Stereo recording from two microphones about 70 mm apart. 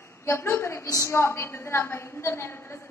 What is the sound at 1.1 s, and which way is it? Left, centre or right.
A woman's voice, left.